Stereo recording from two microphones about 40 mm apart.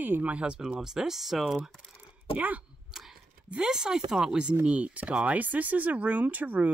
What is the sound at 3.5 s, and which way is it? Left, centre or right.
Speech, centre.